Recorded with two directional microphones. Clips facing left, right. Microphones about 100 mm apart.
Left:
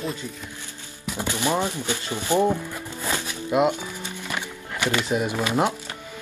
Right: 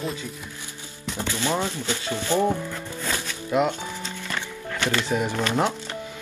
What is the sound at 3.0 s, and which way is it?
Music, 15° left (ahead or behind).